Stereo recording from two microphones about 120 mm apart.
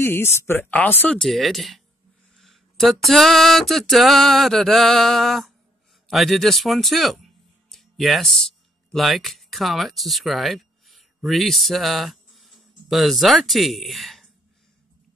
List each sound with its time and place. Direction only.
0.0 s speech: 20° left (ahead or behind)
1.2 s a sound: centre (ahead or behind)
7.7 s speech: centre (ahead or behind)